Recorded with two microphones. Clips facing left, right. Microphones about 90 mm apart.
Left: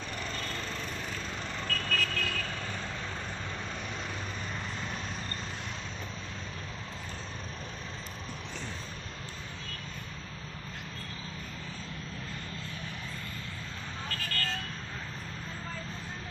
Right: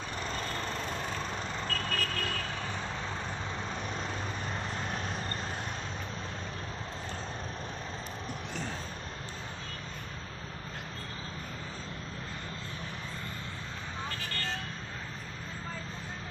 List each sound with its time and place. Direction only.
1.7 s vehicle: 30° right (ahead or behind)
14.0 s vehicle: 20° right (ahead or behind)